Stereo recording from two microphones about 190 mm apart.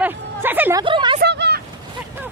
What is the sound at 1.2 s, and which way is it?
Vehicle, 60° right (ahead or behind).